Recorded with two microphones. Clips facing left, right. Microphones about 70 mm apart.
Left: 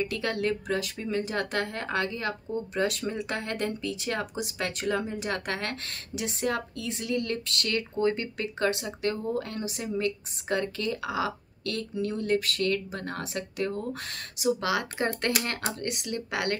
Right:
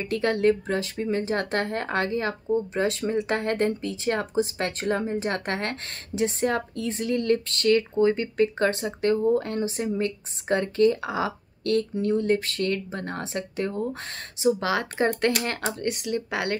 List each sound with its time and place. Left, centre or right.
0.0 s speech: right